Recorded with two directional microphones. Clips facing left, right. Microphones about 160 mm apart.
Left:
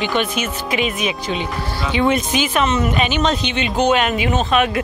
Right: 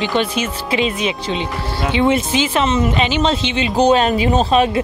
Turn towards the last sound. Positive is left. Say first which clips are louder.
# right 3 dB
turn(degrees=-30)  # may be behind; listen again after turning